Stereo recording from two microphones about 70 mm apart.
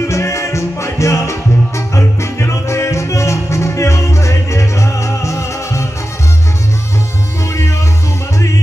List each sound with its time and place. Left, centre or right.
0.0 s music: left